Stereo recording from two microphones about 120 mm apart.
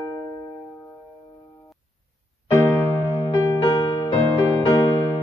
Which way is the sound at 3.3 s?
35° left (ahead or behind).